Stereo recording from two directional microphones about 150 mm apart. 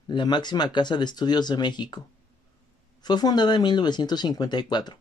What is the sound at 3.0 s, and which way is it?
Speech, 25° left (ahead or behind).